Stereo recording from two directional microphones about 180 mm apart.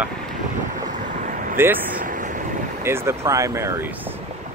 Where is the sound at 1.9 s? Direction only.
50° right (ahead or behind).